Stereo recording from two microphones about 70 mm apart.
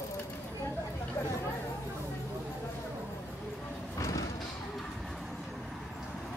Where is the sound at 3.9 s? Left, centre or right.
Left.